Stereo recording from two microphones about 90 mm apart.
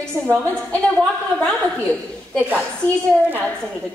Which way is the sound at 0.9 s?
10° left (ahead or behind).